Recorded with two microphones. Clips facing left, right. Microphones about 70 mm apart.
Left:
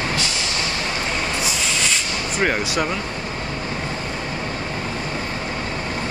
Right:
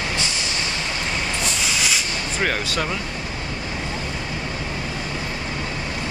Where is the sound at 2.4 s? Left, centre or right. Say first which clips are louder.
Left 3 dB; centre.